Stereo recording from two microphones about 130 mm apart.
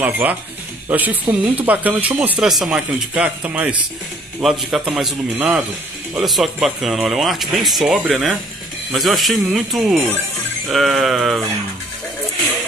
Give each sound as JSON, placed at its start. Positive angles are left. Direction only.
{"t": 0.0, "sound": "speech", "side_deg": -15}